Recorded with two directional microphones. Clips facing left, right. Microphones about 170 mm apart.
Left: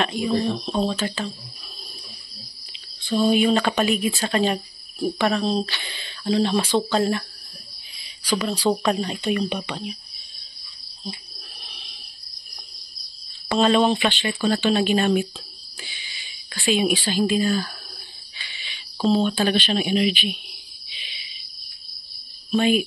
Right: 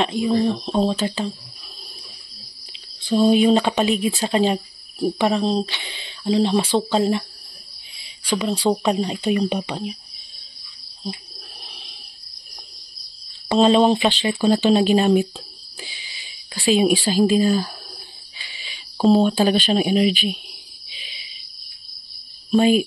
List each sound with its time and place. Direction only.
0.0 s speech: 25° right (ahead or behind)
3.2 s speech: 35° right (ahead or behind)
3.4 s speech: 20° right (ahead or behind)
8.3 s speech: 25° right (ahead or behind)
9.1 s speech: 35° right (ahead or behind)
13.5 s speech: 30° right (ahead or behind)
16.6 s speech: 40° right (ahead or behind)
18.5 s a sound: 40° right (ahead or behind)
19.2 s speech: 40° right (ahead or behind)
22.6 s speech: 35° right (ahead or behind)